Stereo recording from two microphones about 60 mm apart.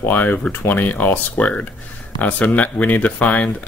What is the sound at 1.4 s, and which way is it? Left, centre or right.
Speech, centre.